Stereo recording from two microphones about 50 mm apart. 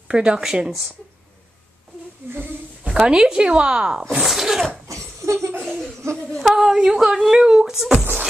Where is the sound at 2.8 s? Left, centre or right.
Centre.